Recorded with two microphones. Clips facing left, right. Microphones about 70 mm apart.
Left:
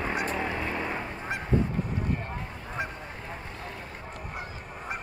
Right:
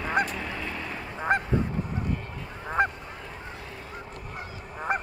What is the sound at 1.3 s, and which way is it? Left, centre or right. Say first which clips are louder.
Goose: right 10 dB; right.